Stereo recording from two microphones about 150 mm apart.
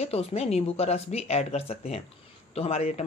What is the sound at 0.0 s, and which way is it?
Speech, 45° left (ahead or behind).